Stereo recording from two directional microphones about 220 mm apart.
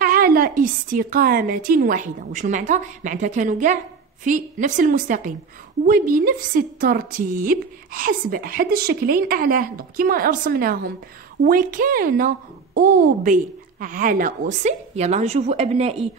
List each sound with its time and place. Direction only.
0.0 s a woman's voice: 40° right (ahead or behind)